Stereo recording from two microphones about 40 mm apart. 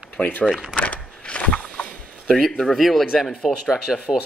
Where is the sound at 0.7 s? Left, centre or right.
Left.